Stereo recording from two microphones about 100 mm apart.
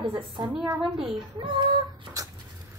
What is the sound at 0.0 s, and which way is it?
A woman's voice, 50° right (ahead or behind).